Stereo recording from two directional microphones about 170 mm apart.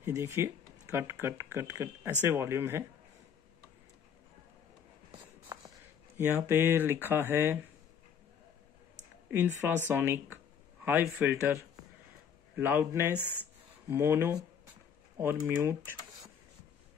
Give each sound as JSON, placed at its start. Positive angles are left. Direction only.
{"t": 0.0, "sound": "speech", "side_deg": -15}
{"t": 5.5, "sound": "a sound", "side_deg": -25}
{"t": 6.1, "sound": "speech", "side_deg": -15}
{"t": 9.6, "sound": "speech", "side_deg": -15}